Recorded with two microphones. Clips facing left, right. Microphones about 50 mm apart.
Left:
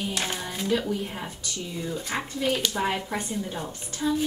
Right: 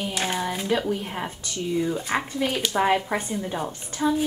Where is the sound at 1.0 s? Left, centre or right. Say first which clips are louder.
Right 3 dB; right.